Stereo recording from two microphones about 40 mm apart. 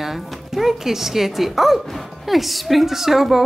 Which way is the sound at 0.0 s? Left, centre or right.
Centre.